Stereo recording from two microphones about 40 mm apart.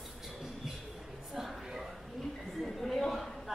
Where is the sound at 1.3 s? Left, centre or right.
Centre.